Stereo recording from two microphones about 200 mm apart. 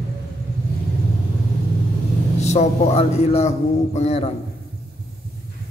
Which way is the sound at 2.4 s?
35° left (ahead or behind).